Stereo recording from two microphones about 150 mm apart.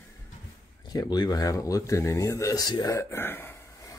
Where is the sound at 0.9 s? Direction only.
25° left (ahead or behind).